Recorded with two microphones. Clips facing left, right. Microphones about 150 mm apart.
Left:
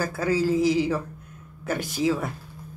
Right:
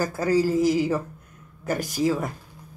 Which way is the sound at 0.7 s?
5° right (ahead or behind).